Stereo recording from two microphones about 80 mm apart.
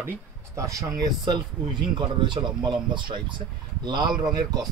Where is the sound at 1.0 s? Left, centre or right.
Right.